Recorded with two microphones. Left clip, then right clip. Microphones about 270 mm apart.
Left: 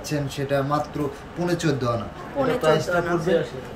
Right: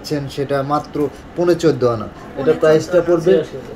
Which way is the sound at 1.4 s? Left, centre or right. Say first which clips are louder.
Right 10 dB; centre.